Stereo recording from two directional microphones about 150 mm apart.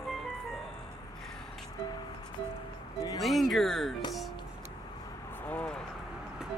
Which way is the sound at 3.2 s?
Centre (ahead or behind).